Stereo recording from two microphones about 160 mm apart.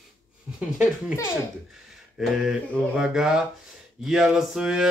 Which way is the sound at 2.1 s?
5° right (ahead or behind).